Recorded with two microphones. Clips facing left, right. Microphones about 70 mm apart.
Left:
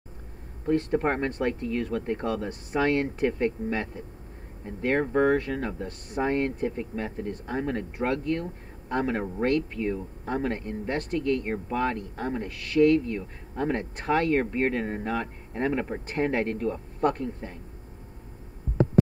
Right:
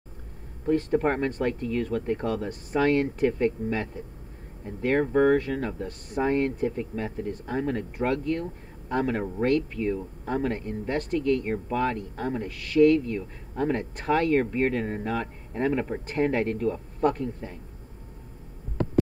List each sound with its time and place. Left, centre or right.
0.7 s speech: left
5.8 s speech: left
8.8 s a man's voice: left